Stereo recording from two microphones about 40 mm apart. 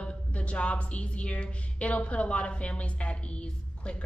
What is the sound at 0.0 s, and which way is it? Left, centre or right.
A woman's voice, left.